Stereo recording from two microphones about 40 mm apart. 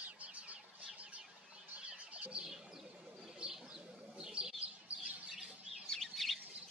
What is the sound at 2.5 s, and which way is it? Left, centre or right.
Bird, centre.